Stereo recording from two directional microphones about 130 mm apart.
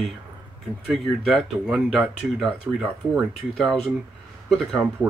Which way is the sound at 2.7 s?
20° right (ahead or behind).